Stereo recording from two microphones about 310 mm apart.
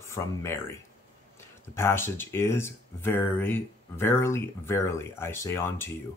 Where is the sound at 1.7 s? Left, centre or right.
Centre.